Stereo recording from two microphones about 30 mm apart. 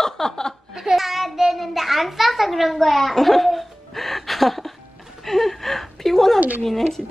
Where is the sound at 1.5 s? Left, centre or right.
Centre.